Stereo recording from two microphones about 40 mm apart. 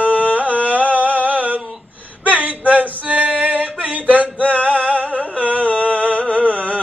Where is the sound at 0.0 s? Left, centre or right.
Right.